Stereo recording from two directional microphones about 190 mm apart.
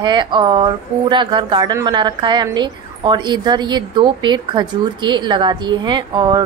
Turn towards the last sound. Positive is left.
turn(degrees=-25)  # may be behind; listen again after turning